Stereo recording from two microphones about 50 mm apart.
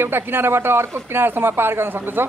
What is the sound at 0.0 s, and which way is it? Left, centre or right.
Speech, right.